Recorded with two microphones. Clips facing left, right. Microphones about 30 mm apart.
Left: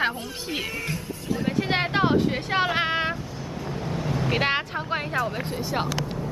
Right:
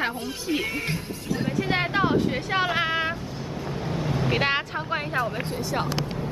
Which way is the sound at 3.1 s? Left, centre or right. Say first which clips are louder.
Right 1 dB; centre.